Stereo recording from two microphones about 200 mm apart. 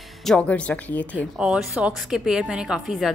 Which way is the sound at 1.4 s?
5° right (ahead or behind).